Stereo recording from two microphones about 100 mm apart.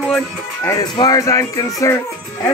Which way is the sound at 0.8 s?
40° left (ahead or behind).